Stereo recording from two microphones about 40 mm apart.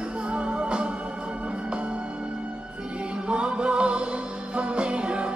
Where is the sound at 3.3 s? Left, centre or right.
Right.